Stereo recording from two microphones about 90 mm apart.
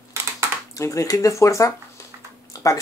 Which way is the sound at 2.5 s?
40° left (ahead or behind).